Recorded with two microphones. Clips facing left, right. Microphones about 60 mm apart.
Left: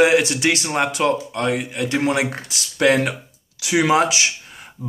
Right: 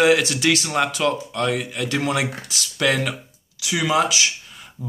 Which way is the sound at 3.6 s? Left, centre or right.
Left.